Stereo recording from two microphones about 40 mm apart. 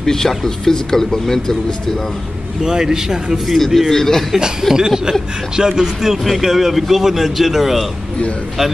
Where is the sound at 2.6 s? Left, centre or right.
Centre.